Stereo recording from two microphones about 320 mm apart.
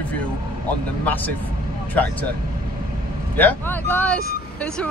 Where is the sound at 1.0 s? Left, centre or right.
Centre.